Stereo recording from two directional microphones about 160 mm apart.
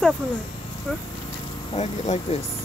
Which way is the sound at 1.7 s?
45° left (ahead or behind).